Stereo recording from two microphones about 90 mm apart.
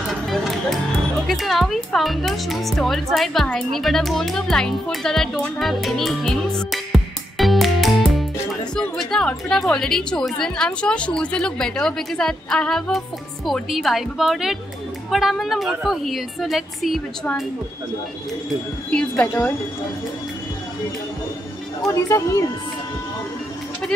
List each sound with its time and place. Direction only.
0.3 s music: centre (ahead or behind)
1.2 s speech: centre (ahead or behind)
7.3 s music: centre (ahead or behind)
8.7 s a woman's voice: 5° left (ahead or behind)
18.9 s a woman's voice: 15° left (ahead or behind)
21.8 s speech: 35° left (ahead or behind)